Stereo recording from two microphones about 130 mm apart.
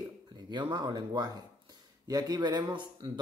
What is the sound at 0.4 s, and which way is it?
Speech, 35° right (ahead or behind).